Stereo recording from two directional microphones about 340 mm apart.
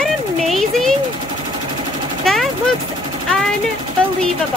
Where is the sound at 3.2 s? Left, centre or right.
Centre.